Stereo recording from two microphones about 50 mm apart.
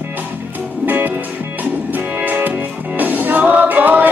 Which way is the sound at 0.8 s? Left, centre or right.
Right.